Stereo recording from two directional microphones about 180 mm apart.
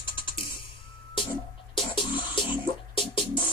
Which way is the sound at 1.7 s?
30° left (ahead or behind).